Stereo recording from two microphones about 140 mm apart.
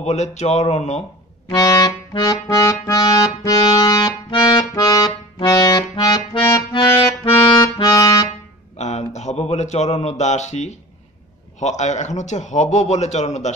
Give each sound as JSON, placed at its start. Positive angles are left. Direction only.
{"t": 0.0, "sound": "speech", "side_deg": 55}
{"t": 1.5, "sound": "accordion", "side_deg": 30}
{"t": 3.6, "sound": "music", "side_deg": 40}
{"t": 3.9, "sound": "accordion", "side_deg": 30}
{"t": 8.7, "sound": "a sound", "side_deg": 55}
{"t": 11.6, "sound": "a man's voice", "side_deg": 55}